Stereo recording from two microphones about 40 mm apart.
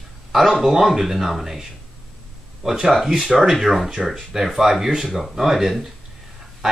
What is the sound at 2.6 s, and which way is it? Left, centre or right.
Speech, centre.